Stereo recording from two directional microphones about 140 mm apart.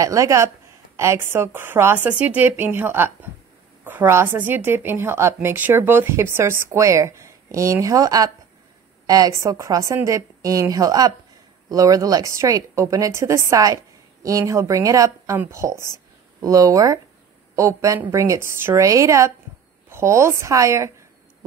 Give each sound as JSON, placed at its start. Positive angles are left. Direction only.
{"t": 0.0, "sound": "a woman's voice", "side_deg": -20}